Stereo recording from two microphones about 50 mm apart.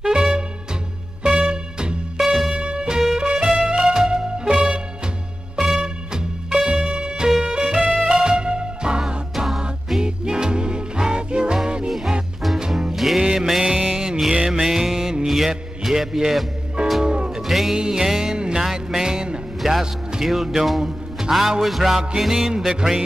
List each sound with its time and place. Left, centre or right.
0.0 s swing music: centre
1.2 s music: centre
2.1 s music: centre
2.5 s music: centre
9.3 s music: centre
12.9 s music: centre
13.2 s music: centre
17.4 s music: centre
19.6 s music: centre